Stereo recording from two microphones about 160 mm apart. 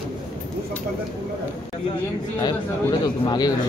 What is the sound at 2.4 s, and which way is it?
Speech, 25° left (ahead or behind).